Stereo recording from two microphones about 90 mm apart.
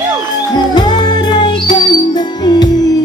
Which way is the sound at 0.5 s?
55° left (ahead or behind).